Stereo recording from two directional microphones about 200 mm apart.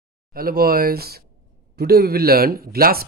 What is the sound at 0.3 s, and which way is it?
Speech, 45° right (ahead or behind).